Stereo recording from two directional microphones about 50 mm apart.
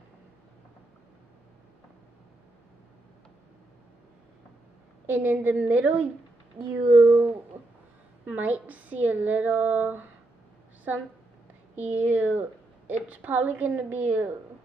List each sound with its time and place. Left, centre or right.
5.0 s a woman's voice: right
8.3 s a woman's voice: right
11.7 s a woman's voice: right